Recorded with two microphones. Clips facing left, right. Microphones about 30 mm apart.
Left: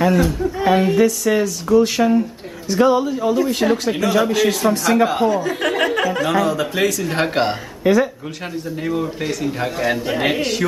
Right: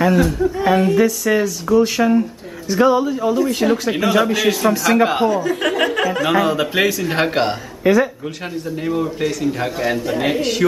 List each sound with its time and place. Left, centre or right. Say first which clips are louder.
0.0 s speech: right 1 dB; centre
3.9 s speech: right 1 dB; centre
5.0 s speech: right 1 dB; centre
5.3 s speech: right 1 dB; centre
6.2 s speech: right 2 dB; centre
10.0 s a man's voice: even; centre